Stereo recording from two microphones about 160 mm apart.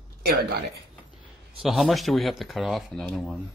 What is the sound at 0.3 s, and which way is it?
Speech, 80° right.